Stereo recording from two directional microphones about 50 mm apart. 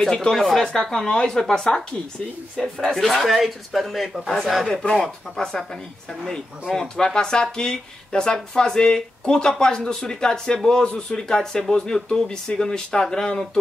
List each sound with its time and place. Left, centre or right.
0.0 s speech: centre
2.9 s speech: centre